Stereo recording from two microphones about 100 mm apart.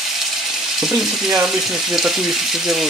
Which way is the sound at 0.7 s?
5° right (ahead or behind).